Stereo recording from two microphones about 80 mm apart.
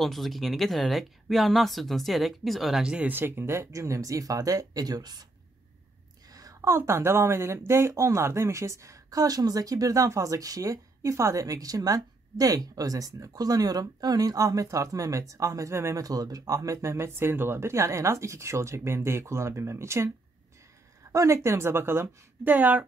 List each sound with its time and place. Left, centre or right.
0.0 s speech: centre
3.1 s speech: right
6.3 s a sound: right
6.8 s speech: right
16.0 s speech: right
21.1 s speech: right